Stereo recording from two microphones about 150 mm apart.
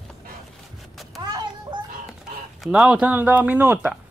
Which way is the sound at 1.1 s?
25° right (ahead or behind).